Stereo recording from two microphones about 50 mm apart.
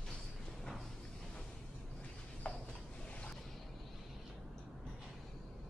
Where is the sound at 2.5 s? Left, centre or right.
Left.